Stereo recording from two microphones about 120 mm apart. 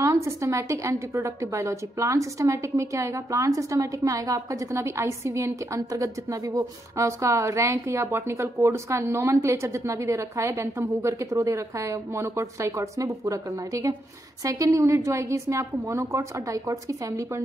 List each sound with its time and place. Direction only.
0.0 s a woman's voice: 25° right (ahead or behind)
6.5 s a woman's voice: 25° right (ahead or behind)